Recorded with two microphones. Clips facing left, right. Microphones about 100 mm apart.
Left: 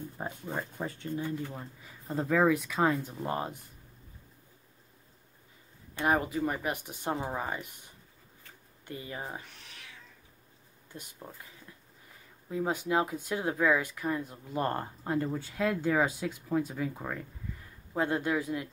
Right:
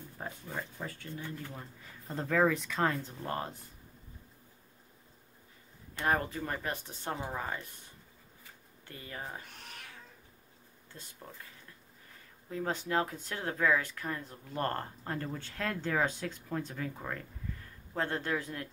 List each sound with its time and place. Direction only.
0.2 s a sound: 20° left (ahead or behind)
0.7 s speech: 20° left (ahead or behind)
5.9 s speech: 10° left (ahead or behind)
9.5 s cat: 50° right (ahead or behind)
10.9 s speech: 15° left (ahead or behind)